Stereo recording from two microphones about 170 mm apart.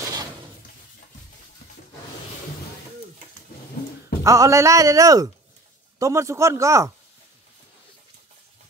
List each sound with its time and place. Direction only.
4.2 s a man's voice: 20° right (ahead or behind)